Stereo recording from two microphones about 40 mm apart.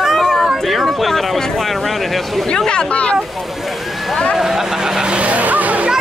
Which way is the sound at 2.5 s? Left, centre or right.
Left.